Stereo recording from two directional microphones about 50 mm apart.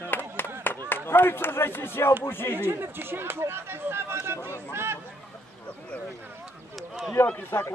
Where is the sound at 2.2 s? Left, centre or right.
Left.